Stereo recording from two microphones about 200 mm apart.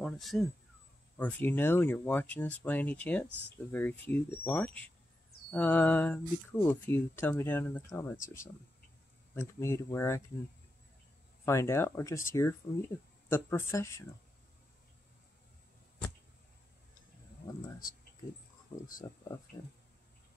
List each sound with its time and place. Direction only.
0.0 s speech: centre (ahead or behind)
9.3 s speech: 15° left (ahead or behind)
11.4 s speech: 15° left (ahead or behind)
18.7 s speech: 25° left (ahead or behind)